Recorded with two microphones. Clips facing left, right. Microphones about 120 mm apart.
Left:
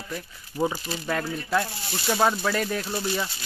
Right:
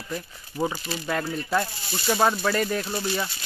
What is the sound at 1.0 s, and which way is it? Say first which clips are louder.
Speech: right 1 dB; 5° right (ahead or behind).